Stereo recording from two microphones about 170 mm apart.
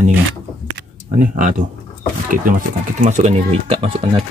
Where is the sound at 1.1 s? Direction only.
50° right (ahead or behind).